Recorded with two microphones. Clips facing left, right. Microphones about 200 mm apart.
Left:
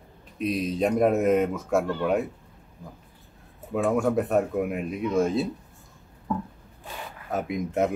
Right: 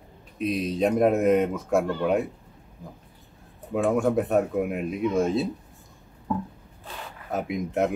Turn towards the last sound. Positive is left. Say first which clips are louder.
# even
turn(degrees=0)  # may be behind; listen again after turning